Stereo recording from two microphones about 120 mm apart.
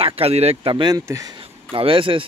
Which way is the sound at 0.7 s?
35° right (ahead or behind).